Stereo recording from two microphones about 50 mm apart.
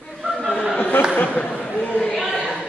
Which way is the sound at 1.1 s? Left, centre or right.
Left.